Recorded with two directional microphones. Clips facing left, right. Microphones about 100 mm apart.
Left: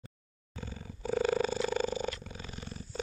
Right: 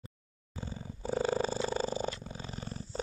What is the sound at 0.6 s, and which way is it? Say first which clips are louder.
Purr: right 1 dB; 30° right (ahead or behind).